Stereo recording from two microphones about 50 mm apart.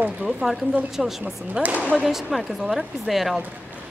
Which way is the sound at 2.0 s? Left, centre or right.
Centre.